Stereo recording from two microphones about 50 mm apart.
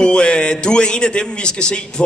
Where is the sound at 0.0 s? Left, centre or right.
Centre.